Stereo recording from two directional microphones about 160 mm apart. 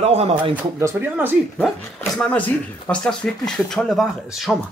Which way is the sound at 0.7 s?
15° right (ahead or behind).